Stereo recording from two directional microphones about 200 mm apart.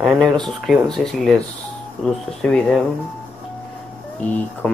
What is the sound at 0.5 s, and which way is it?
Speech, centre (ahead or behind).